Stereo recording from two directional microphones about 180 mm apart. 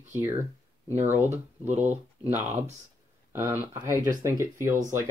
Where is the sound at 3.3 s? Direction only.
15° right (ahead or behind).